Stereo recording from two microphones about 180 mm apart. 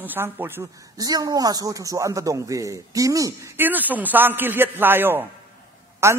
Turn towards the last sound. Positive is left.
turn(degrees=-15)  # may be behind; listen again after turning